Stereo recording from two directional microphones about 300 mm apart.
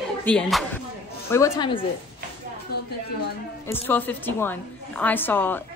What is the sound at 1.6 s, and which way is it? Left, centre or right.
Speech, centre.